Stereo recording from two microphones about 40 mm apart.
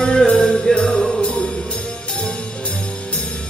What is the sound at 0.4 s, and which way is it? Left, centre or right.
Music, centre.